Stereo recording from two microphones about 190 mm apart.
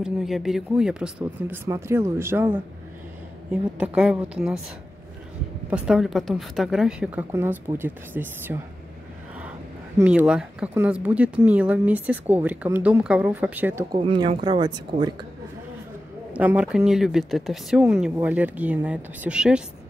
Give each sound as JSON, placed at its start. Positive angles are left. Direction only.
{"t": 0.0, "sound": "speech", "side_deg": 0}
{"t": 5.7, "sound": "speech", "side_deg": -5}
{"t": 9.9, "sound": "speech", "side_deg": -5}
{"t": 13.9, "sound": "speech", "side_deg": -25}
{"t": 16.3, "sound": "speech", "side_deg": -5}